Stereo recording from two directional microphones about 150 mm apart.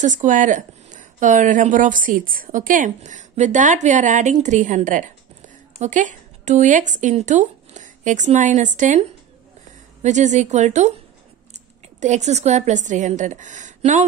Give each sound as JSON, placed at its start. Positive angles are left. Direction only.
{"t": 0.0, "sound": "a woman's voice", "side_deg": -55}
{"t": 10.0, "sound": "a woman's voice", "side_deg": -55}
{"t": 12.0, "sound": "a woman's voice", "side_deg": -50}